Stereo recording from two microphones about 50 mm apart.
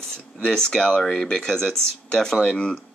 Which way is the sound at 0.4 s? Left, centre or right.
Centre.